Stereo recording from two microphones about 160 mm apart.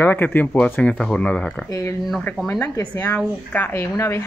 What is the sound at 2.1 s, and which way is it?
Speech, 5° left (ahead or behind).